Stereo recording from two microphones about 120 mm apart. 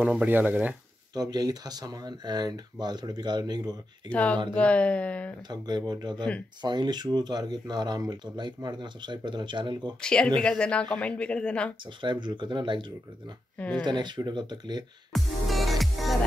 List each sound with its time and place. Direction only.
0.0 s speech: 10° right (ahead or behind)
1.1 s speech: 35° right (ahead or behind)
4.1 s speech: 10° left (ahead or behind)
5.5 s speech: 35° right (ahead or behind)
10.0 s speech: 10° left (ahead or behind)
11.8 s speech: 40° right (ahead or behind)
13.6 s speech: 10° left (ahead or behind)
13.8 s speech: 40° right (ahead or behind)
15.1 s music: centre (ahead or behind)